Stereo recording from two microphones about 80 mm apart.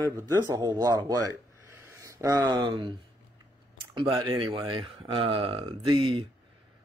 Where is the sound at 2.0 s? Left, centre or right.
Right.